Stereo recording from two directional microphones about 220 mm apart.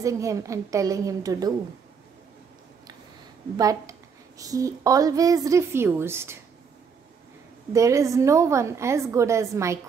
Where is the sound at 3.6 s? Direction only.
15° right (ahead or behind).